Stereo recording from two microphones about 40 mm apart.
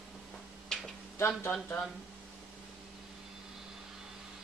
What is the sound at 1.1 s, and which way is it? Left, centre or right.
Speech, left.